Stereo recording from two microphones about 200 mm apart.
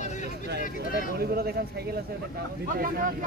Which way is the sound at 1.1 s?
50° right (ahead or behind).